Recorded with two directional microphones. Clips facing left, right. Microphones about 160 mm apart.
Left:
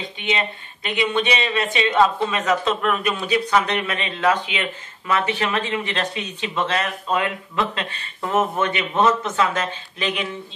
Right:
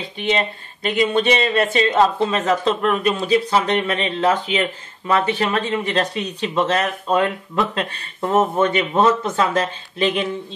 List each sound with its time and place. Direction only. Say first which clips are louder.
0.8 s a man's voice: right 4 dB; 40° right (ahead or behind)
8.2 s a man's voice: right 4 dB; 30° right (ahead or behind)